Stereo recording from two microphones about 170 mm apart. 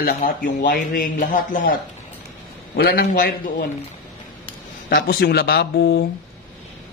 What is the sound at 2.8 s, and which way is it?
Speech, 60° left (ahead or behind).